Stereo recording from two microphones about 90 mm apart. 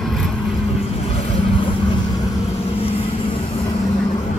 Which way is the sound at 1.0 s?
70° left (ahead or behind).